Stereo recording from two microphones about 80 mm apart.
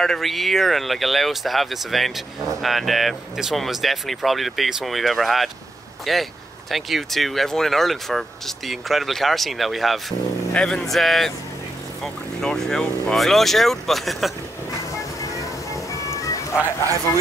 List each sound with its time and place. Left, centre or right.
0.0 s speech: centre
15.9 s music: left